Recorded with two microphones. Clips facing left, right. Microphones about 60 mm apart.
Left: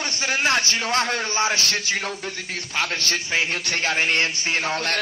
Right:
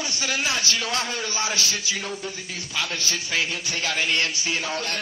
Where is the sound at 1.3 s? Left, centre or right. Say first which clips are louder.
Left 5 dB; left.